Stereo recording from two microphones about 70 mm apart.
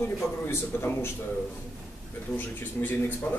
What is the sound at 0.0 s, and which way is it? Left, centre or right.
A man's voice, left.